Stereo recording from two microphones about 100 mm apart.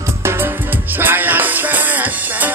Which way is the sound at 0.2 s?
25° right (ahead or behind).